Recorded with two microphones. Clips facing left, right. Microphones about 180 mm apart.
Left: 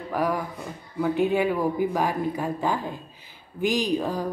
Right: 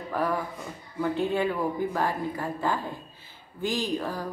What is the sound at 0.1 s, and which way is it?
A woman's voice, 10° left (ahead or behind).